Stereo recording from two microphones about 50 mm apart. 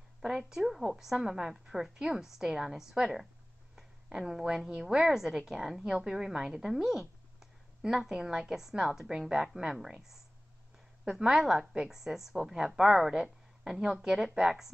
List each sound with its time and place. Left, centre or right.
0.2 s a woman's voice: centre
11.1 s a woman's voice: centre